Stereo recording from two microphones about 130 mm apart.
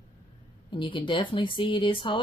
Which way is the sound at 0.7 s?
40° left (ahead or behind).